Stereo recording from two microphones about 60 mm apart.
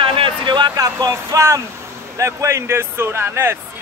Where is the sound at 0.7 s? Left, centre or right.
Right.